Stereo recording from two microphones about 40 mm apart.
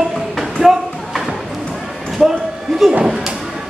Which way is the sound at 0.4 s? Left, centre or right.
Centre.